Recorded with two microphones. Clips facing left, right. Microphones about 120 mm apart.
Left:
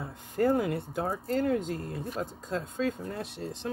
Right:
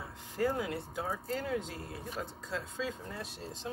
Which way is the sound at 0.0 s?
50° left (ahead or behind).